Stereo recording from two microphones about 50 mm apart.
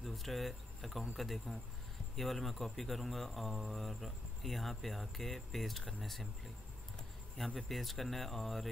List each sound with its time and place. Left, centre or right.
0.0 s speech: centre
7.3 s speech: centre